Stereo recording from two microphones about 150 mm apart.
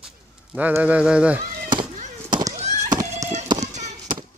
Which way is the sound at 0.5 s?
10° right (ahead or behind).